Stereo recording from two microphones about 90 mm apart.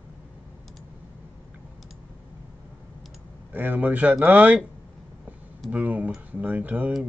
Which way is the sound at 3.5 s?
20° right (ahead or behind).